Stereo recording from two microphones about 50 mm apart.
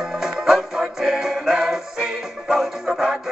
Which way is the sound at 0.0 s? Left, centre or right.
Centre.